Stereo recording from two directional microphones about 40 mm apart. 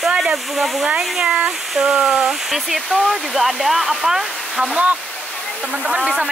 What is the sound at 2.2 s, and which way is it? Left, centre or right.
Hair dryer, centre.